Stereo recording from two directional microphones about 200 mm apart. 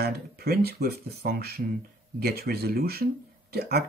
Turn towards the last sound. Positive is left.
turn(degrees=-50)  # may be behind; listen again after turning